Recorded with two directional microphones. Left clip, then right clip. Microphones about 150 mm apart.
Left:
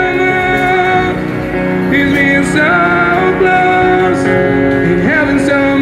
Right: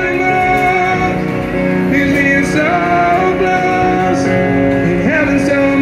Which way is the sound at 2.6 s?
55° right (ahead or behind).